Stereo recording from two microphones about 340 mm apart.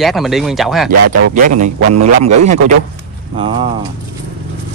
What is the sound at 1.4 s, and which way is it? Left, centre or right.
A man's voice, right.